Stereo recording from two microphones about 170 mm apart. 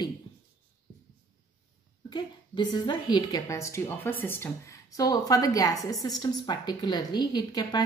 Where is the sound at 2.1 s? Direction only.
25° left (ahead or behind).